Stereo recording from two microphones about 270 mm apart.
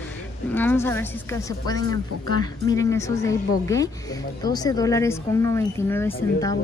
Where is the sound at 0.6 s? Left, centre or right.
Centre.